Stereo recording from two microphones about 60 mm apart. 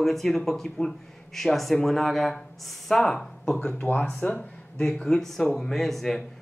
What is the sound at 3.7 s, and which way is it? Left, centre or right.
Speech, left.